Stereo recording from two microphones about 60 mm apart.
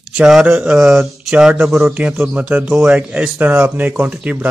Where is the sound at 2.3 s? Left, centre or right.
Right.